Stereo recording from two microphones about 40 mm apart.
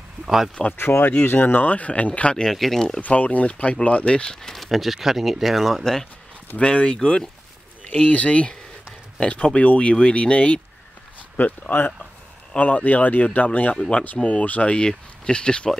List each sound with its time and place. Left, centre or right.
0.2 s speech: centre
0.7 s speech: left
1.0 s speech: left
1.7 s speech: left
2.4 s speech: centre
3.0 s speech: left
4.4 s speech: centre
4.6 s speech: centre
6.6 s speech: left
7.8 s speech: left
11.3 s speech: left
13.7 s speech: left
14.7 s speech: left